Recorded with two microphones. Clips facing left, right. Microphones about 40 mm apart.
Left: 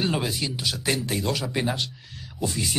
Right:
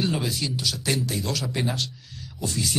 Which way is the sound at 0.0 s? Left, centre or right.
Left.